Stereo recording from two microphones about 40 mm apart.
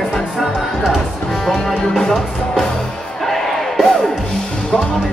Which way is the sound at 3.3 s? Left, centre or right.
Centre.